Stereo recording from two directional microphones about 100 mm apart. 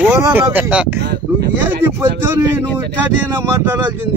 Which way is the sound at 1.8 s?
25° right (ahead or behind).